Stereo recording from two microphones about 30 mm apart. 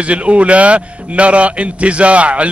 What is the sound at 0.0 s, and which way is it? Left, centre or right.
A man's voice, right.